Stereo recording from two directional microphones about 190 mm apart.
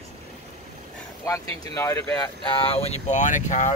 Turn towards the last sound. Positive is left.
turn(degrees=40)  # may be behind; listen again after turning